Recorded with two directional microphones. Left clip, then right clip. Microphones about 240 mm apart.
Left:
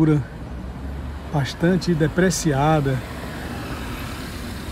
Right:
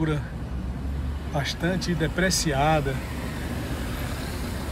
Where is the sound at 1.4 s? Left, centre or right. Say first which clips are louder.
Left 6 dB; left.